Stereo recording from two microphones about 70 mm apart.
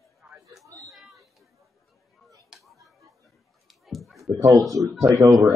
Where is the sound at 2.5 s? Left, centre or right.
Centre.